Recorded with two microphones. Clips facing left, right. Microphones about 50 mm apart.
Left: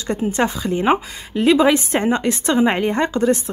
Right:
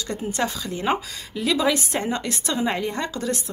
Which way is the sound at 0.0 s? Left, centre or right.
Left.